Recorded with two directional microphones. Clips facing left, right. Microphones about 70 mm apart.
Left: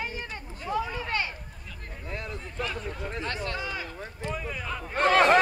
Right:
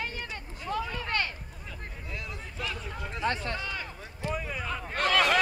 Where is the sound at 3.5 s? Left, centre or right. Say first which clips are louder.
Left 2 dB; centre.